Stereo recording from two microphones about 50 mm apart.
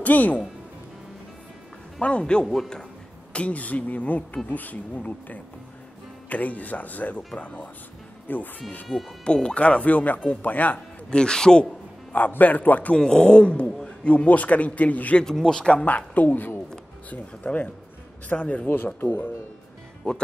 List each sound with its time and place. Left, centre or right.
0.0 s speech: left
2.0 s speech: left
2.4 s a man's voice: centre
3.3 s speech: left
9.2 s speech: centre
11.1 s a man's voice: centre
12.1 s speech: left
12.9 s speech: centre; by 15.1 s left
15.1 s a man's voice: centre
15.7 s speech: left
18.9 s speech: left